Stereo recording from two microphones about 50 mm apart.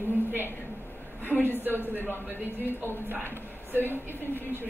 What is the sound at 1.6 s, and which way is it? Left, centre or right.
Speech, right.